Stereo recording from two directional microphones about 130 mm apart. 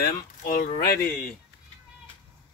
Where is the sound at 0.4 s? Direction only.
90° left.